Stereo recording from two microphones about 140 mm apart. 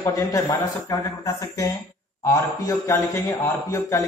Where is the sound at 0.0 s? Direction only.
25° left (ahead or behind).